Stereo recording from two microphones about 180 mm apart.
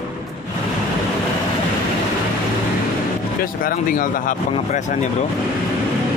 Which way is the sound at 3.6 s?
50° left (ahead or behind).